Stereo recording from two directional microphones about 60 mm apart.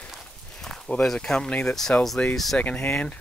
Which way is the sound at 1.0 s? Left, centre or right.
Centre.